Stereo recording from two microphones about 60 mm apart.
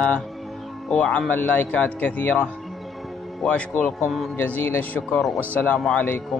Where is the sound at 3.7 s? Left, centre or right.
Left.